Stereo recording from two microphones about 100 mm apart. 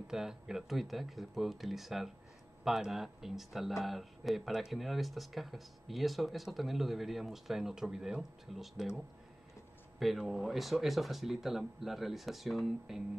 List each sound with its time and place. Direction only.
0.1 s speech: 5° right (ahead or behind)